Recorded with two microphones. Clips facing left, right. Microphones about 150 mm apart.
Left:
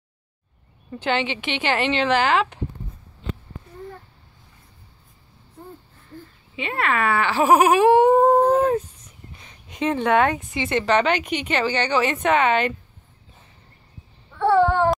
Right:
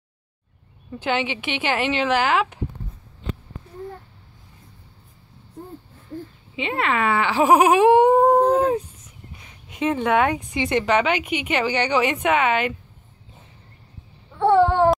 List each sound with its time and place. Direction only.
1.0 s speech: 10° right (ahead or behind)
6.5 s speech: 20° right (ahead or behind)
14.3 s babbling: 20° right (ahead or behind)